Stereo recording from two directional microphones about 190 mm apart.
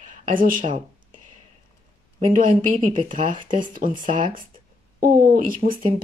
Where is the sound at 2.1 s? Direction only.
40° right (ahead or behind).